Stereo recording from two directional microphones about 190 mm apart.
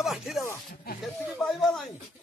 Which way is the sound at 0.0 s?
Centre (ahead or behind).